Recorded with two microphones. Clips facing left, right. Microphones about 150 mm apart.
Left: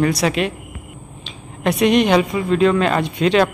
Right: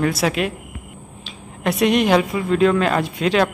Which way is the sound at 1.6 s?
Centre (ahead or behind).